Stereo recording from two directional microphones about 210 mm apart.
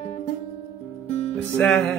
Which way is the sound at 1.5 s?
5° left (ahead or behind).